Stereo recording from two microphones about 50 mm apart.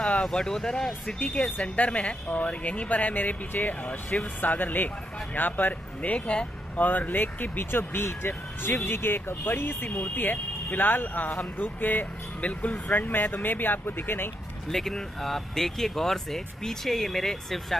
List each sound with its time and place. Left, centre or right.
0.1 s speech: centre
1.2 s a woman's voice: left
6.9 s speech: left
9.8 s speech: left
14.7 s speech: centre